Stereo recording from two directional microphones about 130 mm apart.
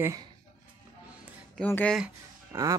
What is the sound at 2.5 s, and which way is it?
Speech, 20° right (ahead or behind).